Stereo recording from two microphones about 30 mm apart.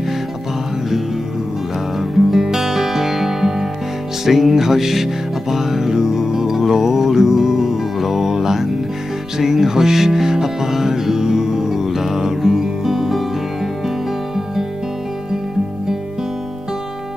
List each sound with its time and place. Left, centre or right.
2.0 s music: centre